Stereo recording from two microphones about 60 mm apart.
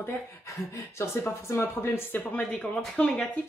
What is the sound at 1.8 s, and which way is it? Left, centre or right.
Speech, left.